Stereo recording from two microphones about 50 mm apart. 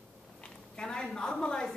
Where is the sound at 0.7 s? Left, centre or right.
Centre.